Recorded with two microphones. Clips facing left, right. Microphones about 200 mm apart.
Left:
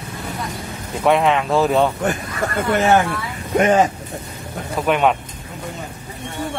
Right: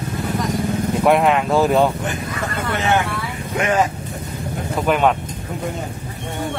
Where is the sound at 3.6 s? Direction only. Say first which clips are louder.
Left 4 dB; 25° left (ahead or behind).